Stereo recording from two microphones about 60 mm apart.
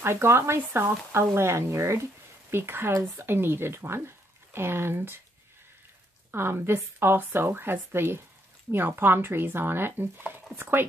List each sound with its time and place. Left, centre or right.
0.0 s speech: right
2.5 s speech: right
6.3 s speech: right